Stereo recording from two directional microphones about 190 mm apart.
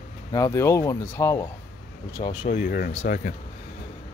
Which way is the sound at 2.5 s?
50° left (ahead or behind).